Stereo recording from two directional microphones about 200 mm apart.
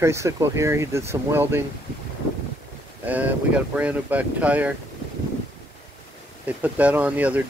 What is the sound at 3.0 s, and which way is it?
Speech, 10° right (ahead or behind).